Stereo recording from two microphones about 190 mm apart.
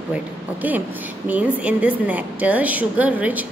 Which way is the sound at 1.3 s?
10° right (ahead or behind).